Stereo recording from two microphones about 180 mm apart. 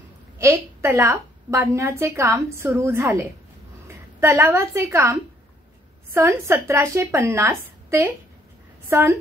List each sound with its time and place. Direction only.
0.4 s a woman's voice: 15° right (ahead or behind)